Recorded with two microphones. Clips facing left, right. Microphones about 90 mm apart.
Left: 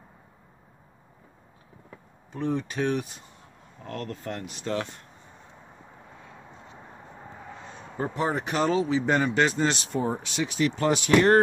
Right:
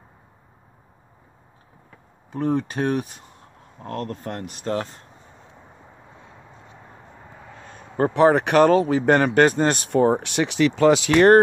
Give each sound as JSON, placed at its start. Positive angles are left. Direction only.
{"t": 2.3, "sound": "speech", "side_deg": -45}
{"t": 7.6, "sound": "speech", "side_deg": -55}
{"t": 10.8, "sound": "speech", "side_deg": -90}